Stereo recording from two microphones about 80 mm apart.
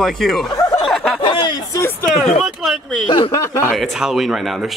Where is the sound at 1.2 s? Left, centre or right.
Left.